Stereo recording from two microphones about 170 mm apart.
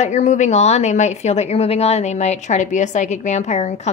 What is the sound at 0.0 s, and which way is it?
A woman's voice, 45° left (ahead or behind).